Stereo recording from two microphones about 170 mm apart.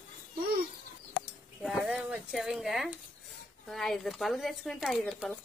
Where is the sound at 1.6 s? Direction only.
Centre (ahead or behind).